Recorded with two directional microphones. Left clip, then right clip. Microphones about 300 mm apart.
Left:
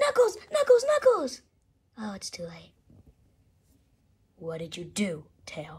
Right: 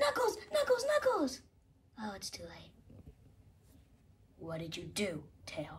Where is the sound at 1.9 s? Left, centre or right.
Centre.